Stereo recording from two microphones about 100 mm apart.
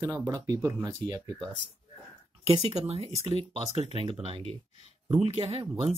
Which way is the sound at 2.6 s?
85° right.